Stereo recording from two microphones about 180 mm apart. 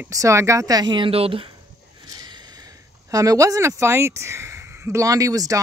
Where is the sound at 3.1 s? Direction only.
20° right (ahead or behind).